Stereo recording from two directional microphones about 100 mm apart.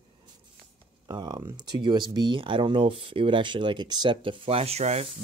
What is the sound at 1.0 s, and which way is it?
Speech, 45° right (ahead or behind).